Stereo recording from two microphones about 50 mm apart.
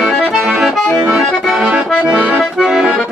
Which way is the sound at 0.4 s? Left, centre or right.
Centre.